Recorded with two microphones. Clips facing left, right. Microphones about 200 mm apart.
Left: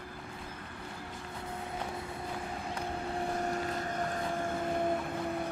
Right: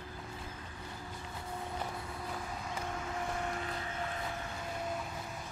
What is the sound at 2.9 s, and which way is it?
Vehicle, 35° left (ahead or behind).